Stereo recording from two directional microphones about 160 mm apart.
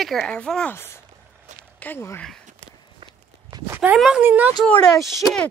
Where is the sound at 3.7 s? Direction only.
5° right (ahead or behind).